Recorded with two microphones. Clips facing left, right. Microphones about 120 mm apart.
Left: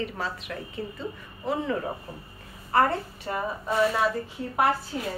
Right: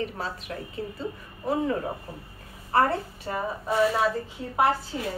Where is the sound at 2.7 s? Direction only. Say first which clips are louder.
Even; 30° right (ahead or behind).